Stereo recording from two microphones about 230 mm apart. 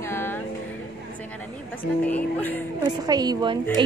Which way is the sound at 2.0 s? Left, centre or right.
Centre.